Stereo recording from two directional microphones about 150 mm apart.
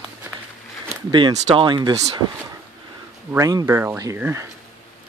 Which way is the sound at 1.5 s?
30° right (ahead or behind).